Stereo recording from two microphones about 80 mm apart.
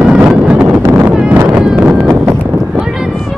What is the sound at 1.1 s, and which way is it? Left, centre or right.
Wind noise, centre.